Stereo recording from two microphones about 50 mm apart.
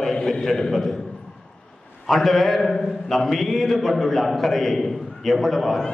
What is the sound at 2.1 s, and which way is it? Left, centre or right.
A man's voice, centre.